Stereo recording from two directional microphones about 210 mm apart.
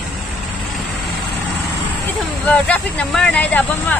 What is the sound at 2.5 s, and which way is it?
Speech, 5° left (ahead or behind).